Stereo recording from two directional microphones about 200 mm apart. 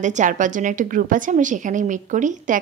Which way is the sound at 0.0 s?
40° right (ahead or behind).